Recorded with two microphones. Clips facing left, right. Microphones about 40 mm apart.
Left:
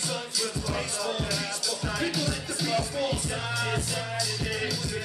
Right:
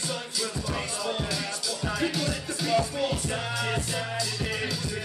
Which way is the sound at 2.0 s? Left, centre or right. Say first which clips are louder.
Right 1 dB; right.